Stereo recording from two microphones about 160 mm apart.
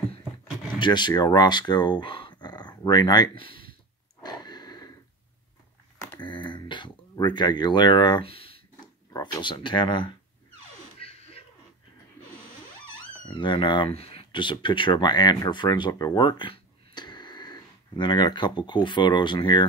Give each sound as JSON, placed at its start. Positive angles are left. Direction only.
{"t": 0.7, "sound": "speech", "side_deg": 30}
{"t": 4.2, "sound": "wheeze", "side_deg": 25}
{"t": 6.1, "sound": "a sound", "side_deg": 30}
{"t": 9.1, "sound": "speech", "side_deg": 30}
{"t": 11.0, "sound": "a sound", "side_deg": 35}
{"t": 13.3, "sound": "speech", "side_deg": 30}